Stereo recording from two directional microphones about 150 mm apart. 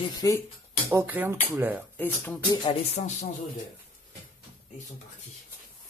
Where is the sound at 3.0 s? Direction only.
55° left (ahead or behind).